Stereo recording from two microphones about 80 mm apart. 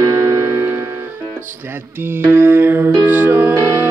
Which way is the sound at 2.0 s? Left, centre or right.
Right.